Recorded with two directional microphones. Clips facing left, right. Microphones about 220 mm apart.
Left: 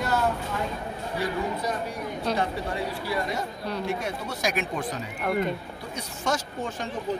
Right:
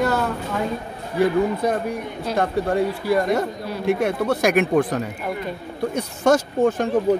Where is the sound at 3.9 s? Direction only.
60° right (ahead or behind).